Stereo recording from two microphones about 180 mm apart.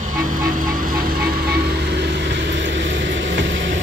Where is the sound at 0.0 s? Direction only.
50° right (ahead or behind).